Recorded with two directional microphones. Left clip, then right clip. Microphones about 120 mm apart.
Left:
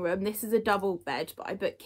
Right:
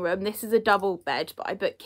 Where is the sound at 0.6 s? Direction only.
30° right (ahead or behind).